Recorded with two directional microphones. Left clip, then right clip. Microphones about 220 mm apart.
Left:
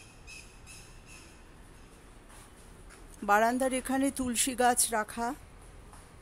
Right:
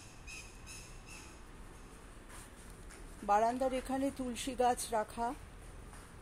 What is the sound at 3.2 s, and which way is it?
Speech, 35° left (ahead or behind).